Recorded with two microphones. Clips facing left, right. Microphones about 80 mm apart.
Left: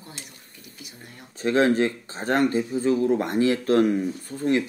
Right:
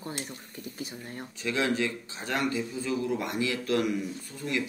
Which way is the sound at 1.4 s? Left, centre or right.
Left.